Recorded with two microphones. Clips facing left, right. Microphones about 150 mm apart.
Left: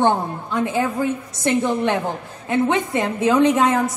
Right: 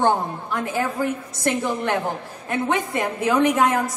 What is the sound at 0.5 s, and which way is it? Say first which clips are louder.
A woman's voice: left 4 dB; 20° left (ahead or behind).